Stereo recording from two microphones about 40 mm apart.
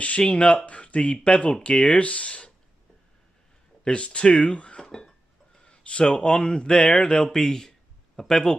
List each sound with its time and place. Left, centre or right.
0.3 s speech: left
3.8 s speech: left
4.8 s a sound: centre
5.6 s speech: left
7.3 s speech: centre